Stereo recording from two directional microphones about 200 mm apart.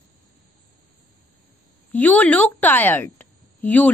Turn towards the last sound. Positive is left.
turn(degrees=10)  # may be behind; listen again after turning